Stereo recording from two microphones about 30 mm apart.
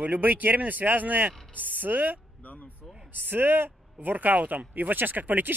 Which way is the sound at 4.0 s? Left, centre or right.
Right.